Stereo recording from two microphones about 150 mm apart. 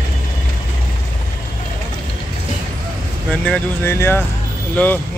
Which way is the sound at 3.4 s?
10° left (ahead or behind).